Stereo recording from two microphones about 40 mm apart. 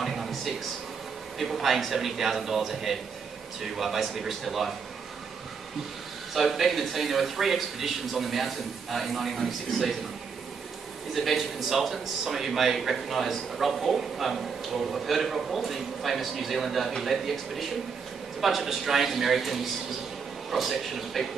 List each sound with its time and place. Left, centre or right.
0.0 s a sound: centre
1.4 s speech: centre
6.3 s speech: centre
11.1 s speech: centre